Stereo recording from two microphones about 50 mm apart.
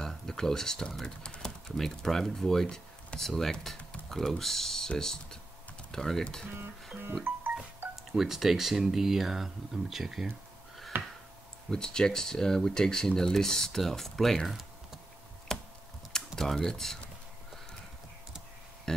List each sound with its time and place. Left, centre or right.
0.0 s a sound: centre
0.9 s speech: centre
2.6 s a sound: left
3.2 s speech: centre
7.2 s music: right
7.9 s speech: centre
11.7 s speech: centre
15.5 s a sound: centre
16.1 s speech: centre
18.9 s music: centre